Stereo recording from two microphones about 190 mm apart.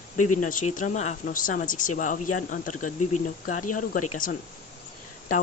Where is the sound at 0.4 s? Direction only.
45° left (ahead or behind).